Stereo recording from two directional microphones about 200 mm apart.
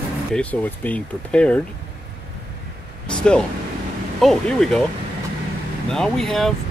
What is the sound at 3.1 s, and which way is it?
Speech, 5° left (ahead or behind).